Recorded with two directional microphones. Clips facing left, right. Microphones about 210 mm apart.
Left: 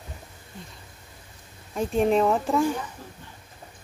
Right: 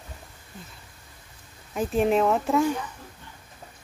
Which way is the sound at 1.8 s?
5° right (ahead or behind).